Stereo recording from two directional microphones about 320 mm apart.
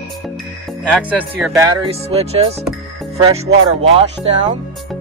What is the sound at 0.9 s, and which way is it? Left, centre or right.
Speech, centre.